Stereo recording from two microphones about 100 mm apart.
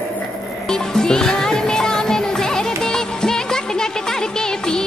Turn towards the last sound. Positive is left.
turn(degrees=5)  # may be behind; listen again after turning